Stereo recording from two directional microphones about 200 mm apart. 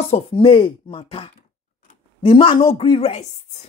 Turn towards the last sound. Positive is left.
turn(degrees=30)  # may be behind; listen again after turning